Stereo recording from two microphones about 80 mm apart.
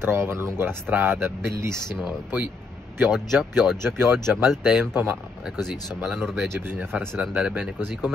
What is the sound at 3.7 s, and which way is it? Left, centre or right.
Speech, right.